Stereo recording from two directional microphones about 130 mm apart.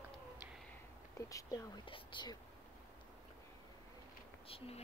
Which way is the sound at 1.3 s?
25° left (ahead or behind).